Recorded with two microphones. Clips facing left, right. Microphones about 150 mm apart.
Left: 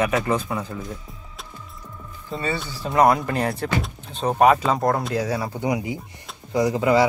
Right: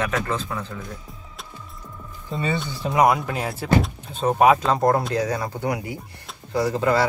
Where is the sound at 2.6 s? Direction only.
20° right (ahead or behind).